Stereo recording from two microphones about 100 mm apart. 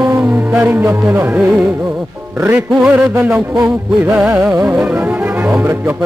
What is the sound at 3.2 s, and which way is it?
Music, 5° right (ahead or behind).